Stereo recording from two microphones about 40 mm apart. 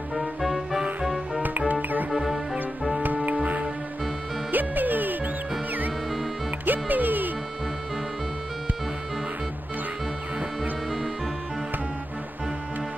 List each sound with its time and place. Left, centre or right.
0.1 s music: centre
1.7 s music: right
2.0 s music: centre
4.5 s music: right
6.6 s music: right